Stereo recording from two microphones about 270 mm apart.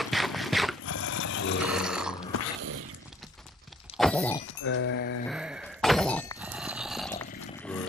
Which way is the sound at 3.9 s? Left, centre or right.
Centre.